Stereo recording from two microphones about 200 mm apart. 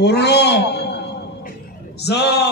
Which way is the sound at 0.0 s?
55° left (ahead or behind).